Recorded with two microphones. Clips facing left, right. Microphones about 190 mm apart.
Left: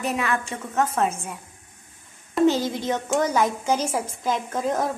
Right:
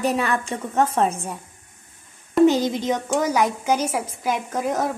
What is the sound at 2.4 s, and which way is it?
A woman's voice, 15° right (ahead or behind).